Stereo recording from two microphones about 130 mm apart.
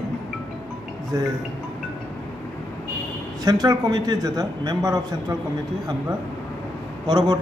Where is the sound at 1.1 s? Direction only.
30° right (ahead or behind).